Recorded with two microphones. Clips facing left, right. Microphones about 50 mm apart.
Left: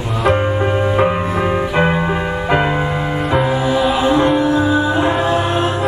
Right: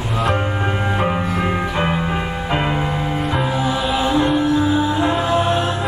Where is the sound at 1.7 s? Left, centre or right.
Left.